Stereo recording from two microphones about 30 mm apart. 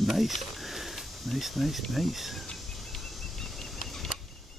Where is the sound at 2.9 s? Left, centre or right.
Centre.